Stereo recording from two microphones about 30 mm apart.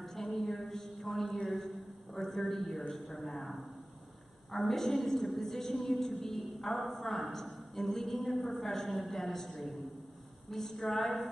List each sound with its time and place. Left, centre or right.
0.0 s a sound: centre
2.9 s a woman's voice: centre
4.5 s a woman's voice: centre